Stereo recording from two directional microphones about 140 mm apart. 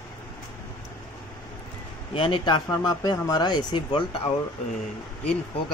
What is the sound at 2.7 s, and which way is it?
Speech, 25° left (ahead or behind).